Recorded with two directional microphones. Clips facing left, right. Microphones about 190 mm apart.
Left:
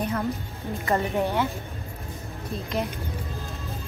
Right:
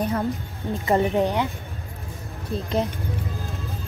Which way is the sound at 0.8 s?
15° right (ahead or behind).